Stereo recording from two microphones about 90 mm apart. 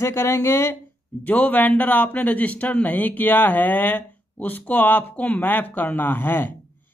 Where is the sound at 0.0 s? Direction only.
30° left (ahead or behind).